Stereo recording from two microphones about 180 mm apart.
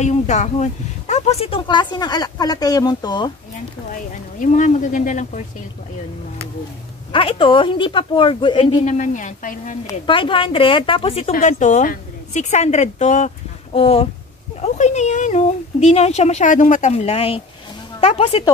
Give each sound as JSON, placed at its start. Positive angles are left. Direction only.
{"t": 0.0, "sound": "speech", "side_deg": 40}
{"t": 4.4, "sound": "speech", "side_deg": 45}
{"t": 7.1, "sound": "speech", "side_deg": 30}
{"t": 8.8, "sound": "speech", "side_deg": 45}
{"t": 9.8, "sound": "speech", "side_deg": 25}